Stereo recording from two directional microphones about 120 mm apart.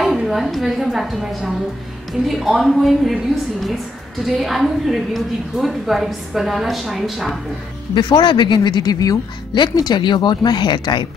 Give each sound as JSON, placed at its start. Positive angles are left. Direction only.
{"t": 0.0, "sound": "a woman's voice", "side_deg": 0}
{"t": 4.4, "sound": "a woman's voice", "side_deg": 0}
{"t": 7.9, "sound": "speech", "side_deg": 40}